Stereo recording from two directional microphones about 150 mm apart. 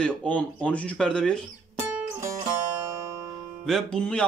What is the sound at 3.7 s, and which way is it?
Speech, 5° left (ahead or behind).